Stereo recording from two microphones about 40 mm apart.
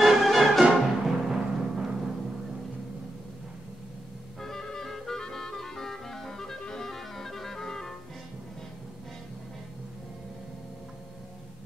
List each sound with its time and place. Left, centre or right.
0.0 s music: centre
1.1 s music: centre
4.4 s music: centre